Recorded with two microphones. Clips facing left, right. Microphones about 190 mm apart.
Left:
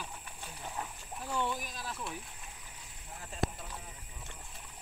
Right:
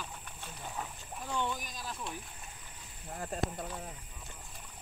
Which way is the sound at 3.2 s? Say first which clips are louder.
Right 2 dB; 50° right (ahead or behind).